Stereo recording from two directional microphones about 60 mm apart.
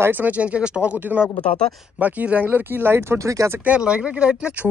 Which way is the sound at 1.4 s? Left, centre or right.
Centre.